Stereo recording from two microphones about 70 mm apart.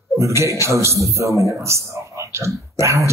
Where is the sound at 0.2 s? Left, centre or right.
Right.